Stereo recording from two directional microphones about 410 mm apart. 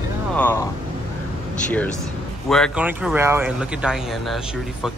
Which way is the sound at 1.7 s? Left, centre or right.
Centre.